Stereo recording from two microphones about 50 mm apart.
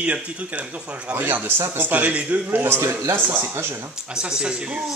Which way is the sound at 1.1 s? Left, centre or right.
Right.